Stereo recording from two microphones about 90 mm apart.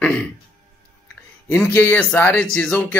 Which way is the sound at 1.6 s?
20° left (ahead or behind).